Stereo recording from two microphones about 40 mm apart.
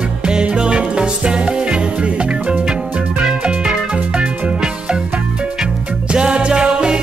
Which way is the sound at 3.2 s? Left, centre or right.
Centre.